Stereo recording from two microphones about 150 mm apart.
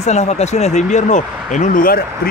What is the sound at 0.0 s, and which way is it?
Speech, 50° left (ahead or behind).